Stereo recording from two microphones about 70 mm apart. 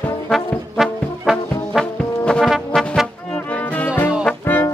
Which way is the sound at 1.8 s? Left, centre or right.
Centre.